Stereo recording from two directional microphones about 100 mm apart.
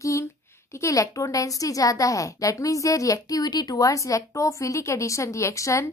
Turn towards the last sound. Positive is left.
turn(degrees=30)  # may be behind; listen again after turning